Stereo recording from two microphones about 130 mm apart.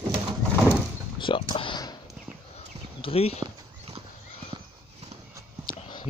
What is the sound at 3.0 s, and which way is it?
Speech, 50° left (ahead or behind).